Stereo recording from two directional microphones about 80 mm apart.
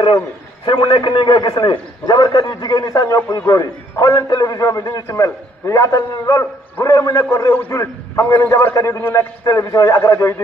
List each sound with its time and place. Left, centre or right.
0.7 s a man's voice: left
2.8 s a man's voice: left
9.0 s a man's voice: left
9.4 s a man's voice: left